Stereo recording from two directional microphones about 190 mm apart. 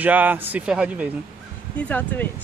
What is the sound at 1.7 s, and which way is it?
Speech, 5° left (ahead or behind).